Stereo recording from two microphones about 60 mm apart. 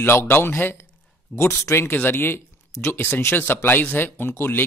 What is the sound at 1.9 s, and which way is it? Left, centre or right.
Speech, left.